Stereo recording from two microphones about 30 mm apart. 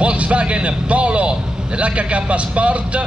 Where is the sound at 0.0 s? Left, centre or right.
Right.